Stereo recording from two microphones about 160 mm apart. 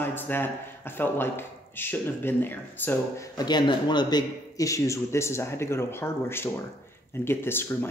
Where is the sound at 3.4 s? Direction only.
25° left (ahead or behind).